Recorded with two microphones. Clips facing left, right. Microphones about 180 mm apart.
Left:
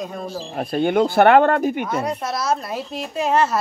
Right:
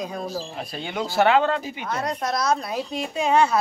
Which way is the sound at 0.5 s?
55° left (ahead or behind).